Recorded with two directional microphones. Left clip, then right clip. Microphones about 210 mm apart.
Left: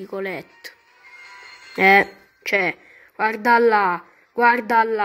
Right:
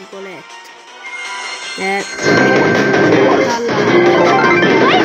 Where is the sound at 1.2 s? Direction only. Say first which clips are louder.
Right 18 dB; 60° right (ahead or behind).